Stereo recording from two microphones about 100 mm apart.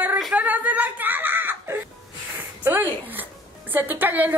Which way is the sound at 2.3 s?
20° right (ahead or behind).